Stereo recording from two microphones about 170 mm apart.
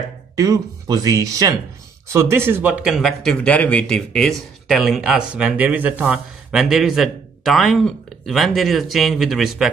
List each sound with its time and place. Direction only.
0.4 s speech: 20° right (ahead or behind); by 9.7 s centre (ahead or behind)